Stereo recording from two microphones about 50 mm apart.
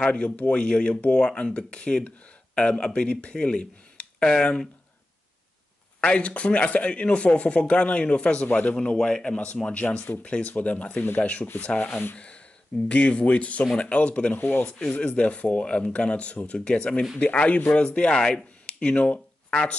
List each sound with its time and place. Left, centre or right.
0.0 s speech: left
5.9 s speech: left
8.9 s speech: centre; by 10.1 s left
10.1 s speech: left
11.9 s speech: left
12.8 s speech: left
14.3 s speech: left
14.9 s speech: left